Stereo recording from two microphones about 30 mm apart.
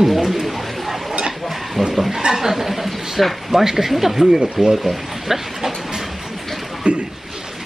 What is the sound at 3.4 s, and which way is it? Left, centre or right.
Speech, centre.